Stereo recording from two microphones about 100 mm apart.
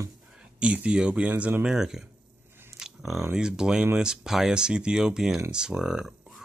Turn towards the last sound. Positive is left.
turn(degrees=-5)  # may be behind; listen again after turning